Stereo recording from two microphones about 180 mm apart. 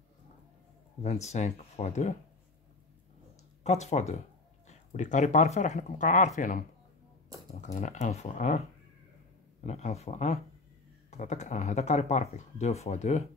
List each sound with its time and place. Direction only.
1.0 s speech: 40° left (ahead or behind)
3.6 s speech: 40° left (ahead or behind)